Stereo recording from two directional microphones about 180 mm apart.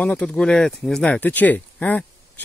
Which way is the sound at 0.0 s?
5° left (ahead or behind).